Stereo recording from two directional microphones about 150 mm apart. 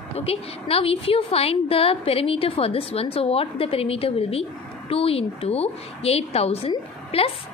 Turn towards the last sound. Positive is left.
turn(degrees=40)  # may be behind; listen again after turning